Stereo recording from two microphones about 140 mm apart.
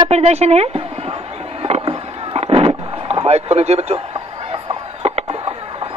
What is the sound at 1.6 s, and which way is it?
Boat, 45° right (ahead or behind).